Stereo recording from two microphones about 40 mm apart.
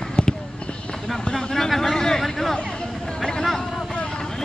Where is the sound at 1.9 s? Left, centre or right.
Centre.